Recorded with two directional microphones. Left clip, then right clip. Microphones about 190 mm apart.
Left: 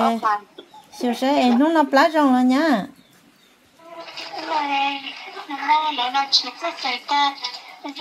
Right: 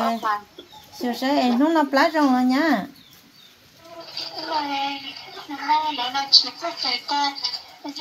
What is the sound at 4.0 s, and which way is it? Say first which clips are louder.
Bathtub: even; 15° left (ahead or behind).